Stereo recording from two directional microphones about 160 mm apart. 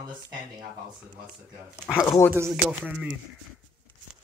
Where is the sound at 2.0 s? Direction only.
15° left (ahead or behind).